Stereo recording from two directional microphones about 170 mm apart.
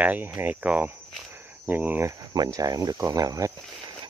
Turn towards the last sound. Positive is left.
turn(degrees=-20)  # may be behind; listen again after turning